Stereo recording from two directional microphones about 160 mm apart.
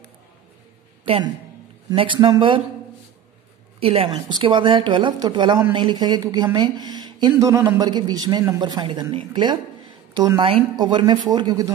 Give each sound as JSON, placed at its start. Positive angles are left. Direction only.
{"t": 1.0, "sound": "a man's voice", "side_deg": -35}
{"t": 3.8, "sound": "speech", "side_deg": -40}
{"t": 4.1, "sound": "a woman's voice", "side_deg": -25}